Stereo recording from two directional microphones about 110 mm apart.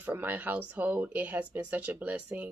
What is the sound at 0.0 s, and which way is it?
A woman's voice, 15° right (ahead or behind).